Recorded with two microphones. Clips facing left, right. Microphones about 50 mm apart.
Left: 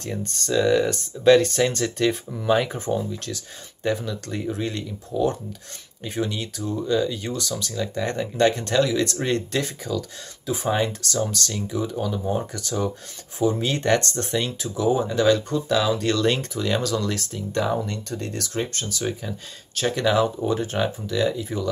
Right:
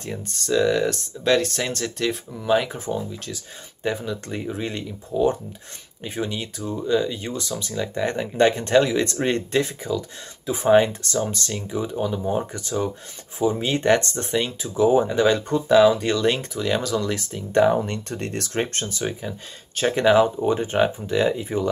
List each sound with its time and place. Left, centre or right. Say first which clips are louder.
0.0 s speech: left 1 dB; centre
17.5 s speech: right 7 dB; right
17.7 s speech: right 2 dB; right
18.9 s speech: even; right